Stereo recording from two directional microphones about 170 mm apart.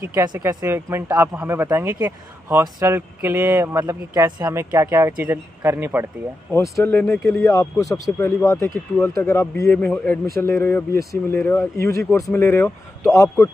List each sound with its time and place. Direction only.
0.2 s speech: 20° right (ahead or behind)
6.5 s speech: 15° left (ahead or behind)